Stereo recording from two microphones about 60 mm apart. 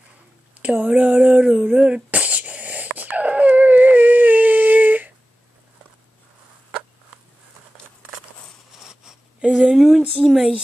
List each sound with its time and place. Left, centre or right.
0.6 s speech: right
2.0 s dog: right
8.7 s a sound: centre
10.1 s speech: centre